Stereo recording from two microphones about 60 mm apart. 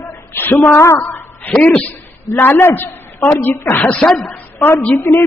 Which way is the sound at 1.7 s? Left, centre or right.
Left.